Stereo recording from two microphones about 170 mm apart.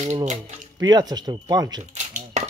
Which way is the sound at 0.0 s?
45° right (ahead or behind).